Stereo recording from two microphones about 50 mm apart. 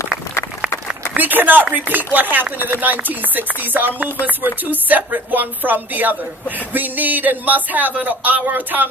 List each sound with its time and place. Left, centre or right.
1.1 s chopping: right